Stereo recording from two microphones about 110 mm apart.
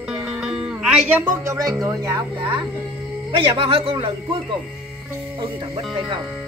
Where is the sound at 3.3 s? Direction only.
55° right (ahead or behind).